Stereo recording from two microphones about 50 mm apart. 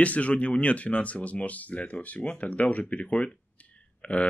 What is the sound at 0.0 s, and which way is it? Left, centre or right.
Speech, left.